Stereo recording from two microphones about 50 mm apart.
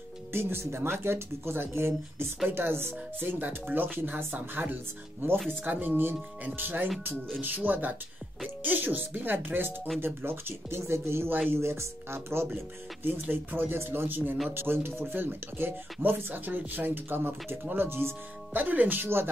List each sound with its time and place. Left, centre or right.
0.3 s speech: right
12.5 s speech: right
19.0 s speech: right